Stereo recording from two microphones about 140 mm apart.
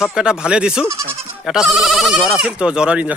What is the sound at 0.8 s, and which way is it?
Speech, 20° right (ahead or behind).